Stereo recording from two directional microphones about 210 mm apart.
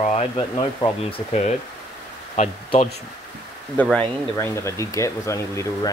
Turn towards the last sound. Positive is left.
turn(degrees=15)  # may be behind; listen again after turning